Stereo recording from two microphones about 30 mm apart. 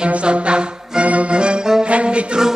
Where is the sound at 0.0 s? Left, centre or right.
Right.